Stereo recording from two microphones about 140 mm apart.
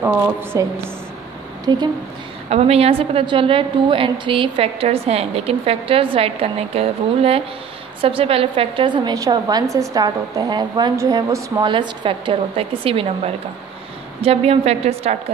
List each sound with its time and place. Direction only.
0.0 s a woman's voice: 15° right (ahead or behind)
1.7 s a woman's voice: 30° right (ahead or behind)
2.5 s a woman's voice: 45° right (ahead or behind); by 11.6 s 20° right (ahead or behind)
11.6 s a woman's voice: 35° right (ahead or behind)